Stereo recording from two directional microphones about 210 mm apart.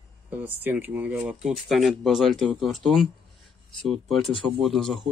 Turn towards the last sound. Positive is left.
turn(degrees=0)  # may be behind; listen again after turning